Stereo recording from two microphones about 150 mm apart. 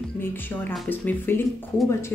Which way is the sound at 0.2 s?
15° left (ahead or behind).